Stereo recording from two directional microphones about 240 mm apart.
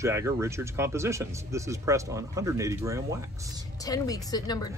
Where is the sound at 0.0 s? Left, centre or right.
Centre.